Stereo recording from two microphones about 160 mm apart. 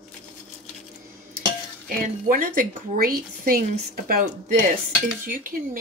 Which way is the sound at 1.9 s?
60° right (ahead or behind).